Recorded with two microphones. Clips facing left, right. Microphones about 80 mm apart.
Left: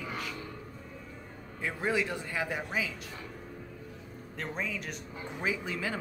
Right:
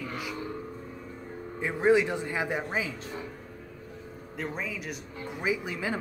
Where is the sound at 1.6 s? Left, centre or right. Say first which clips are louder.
Right 8 dB; right.